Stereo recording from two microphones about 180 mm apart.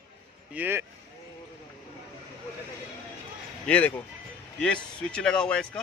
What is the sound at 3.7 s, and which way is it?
Speech, 10° left (ahead or behind).